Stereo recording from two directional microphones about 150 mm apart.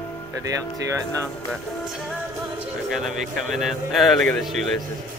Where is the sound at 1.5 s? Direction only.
Centre (ahead or behind).